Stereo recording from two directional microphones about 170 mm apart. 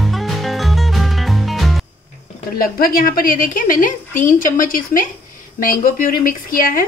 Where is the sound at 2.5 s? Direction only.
60° left (ahead or behind).